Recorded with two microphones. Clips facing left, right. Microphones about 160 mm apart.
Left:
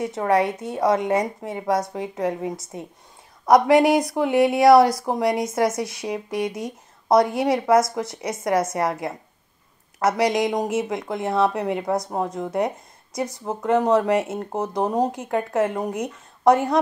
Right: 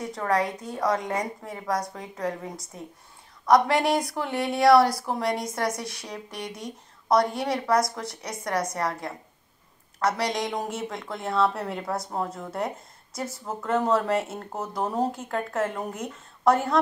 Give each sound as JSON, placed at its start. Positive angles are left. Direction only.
{"t": 0.0, "sound": "a woman's voice", "side_deg": 25}